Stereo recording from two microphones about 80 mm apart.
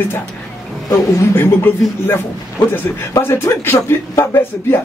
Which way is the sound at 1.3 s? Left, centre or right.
Left.